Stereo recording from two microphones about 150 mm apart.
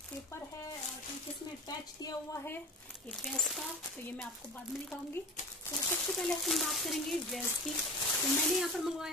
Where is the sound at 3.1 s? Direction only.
Centre (ahead or behind).